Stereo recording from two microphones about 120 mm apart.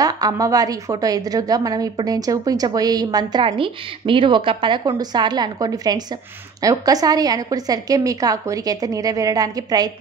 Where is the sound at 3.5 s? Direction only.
45° right (ahead or behind).